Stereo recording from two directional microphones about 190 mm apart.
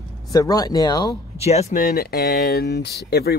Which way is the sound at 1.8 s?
50° left (ahead or behind).